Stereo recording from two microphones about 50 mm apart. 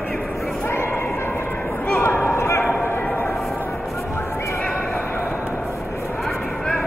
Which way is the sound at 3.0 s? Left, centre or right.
Left.